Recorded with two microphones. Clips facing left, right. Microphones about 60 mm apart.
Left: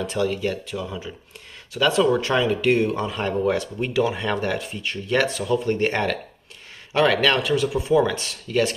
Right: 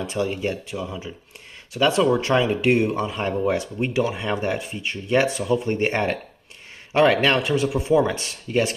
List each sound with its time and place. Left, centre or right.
0.2 s speech: right
0.7 s a man's voice: centre
1.8 s a man's voice: right